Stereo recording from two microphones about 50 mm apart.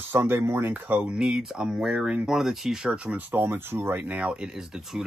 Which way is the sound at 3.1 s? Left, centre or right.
Right.